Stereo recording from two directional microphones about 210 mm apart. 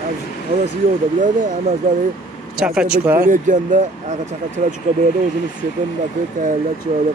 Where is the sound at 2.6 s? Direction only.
5° right (ahead or behind).